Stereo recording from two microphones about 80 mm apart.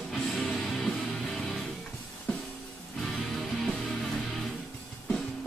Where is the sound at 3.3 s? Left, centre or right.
Centre.